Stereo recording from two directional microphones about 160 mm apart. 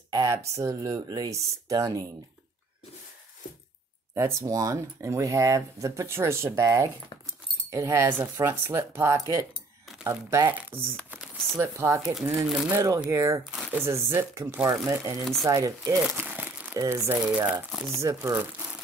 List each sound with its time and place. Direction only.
0.1 s speech: 20° right (ahead or behind)
4.1 s speech: 20° right (ahead or behind)
12.1 s speech: 5° right (ahead or behind)
12.7 s speech: 20° right (ahead or behind)
13.5 s speech: 5° right (ahead or behind)
13.8 s speech: 15° right (ahead or behind)
17.9 s speech: 20° right (ahead or behind)